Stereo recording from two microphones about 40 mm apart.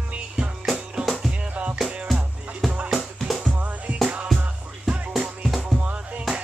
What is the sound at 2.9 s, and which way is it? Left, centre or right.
Music, centre.